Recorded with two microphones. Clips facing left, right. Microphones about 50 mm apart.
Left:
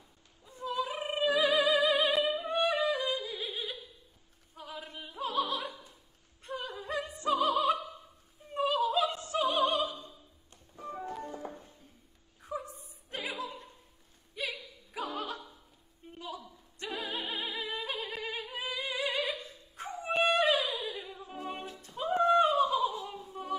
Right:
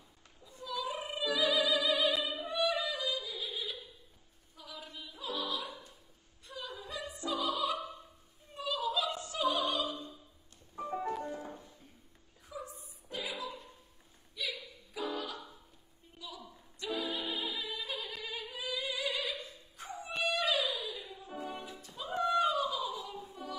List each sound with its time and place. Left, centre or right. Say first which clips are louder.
0.5 s opera: left 4 dB; left
2.2 s music: left 4 dB; left
4.6 s opera: left 4 dB; left
6.4 s a sound: left 5 dB; left
7.2 s opera: left 6 dB; left
12.4 s opera: left 6 dB; left
14.3 s a sound: left 2 dB; left
15.0 s opera: left 1 dB; left
16.0 s a sound: left 11 dB; left
16.8 s music: even; left
19.4 s dog: left 4 dB; left
20.2 s music: left 3 dB; left